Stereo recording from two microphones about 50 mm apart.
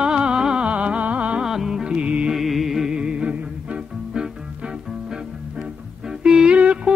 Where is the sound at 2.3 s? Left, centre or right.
Centre.